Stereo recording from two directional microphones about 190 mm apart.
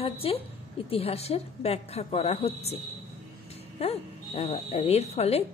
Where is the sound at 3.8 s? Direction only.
30° left (ahead or behind).